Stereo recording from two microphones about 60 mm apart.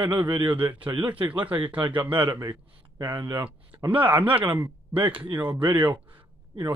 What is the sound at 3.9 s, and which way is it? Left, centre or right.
Speech, right.